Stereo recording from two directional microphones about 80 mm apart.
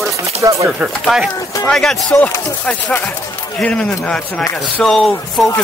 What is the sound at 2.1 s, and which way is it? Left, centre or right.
Speech, left.